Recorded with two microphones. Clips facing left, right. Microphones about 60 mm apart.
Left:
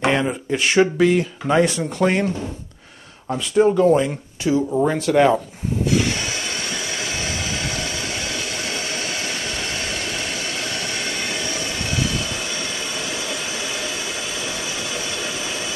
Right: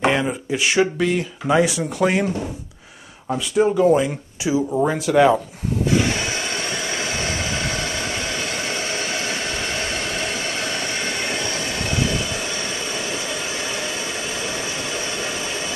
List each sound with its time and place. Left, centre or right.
0.0 s speech: centre
6.1 s train: right
8.7 s a sound: right
10.3 s train: right
11.4 s train: right